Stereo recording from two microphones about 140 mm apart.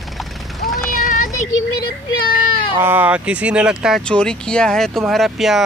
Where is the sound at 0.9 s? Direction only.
80° left.